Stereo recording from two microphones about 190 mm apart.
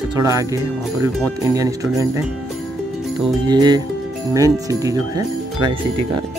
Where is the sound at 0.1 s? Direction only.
20° right (ahead or behind).